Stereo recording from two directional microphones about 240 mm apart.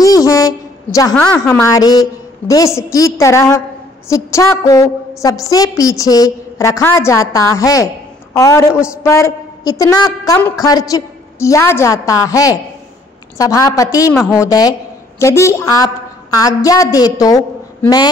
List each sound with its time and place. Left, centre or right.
0.0 s a woman's voice: centre